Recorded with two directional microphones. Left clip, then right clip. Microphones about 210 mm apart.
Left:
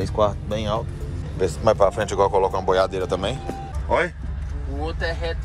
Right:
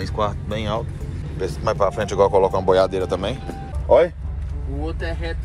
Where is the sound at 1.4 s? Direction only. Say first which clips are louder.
Left 3 dB; 30° left (ahead or behind).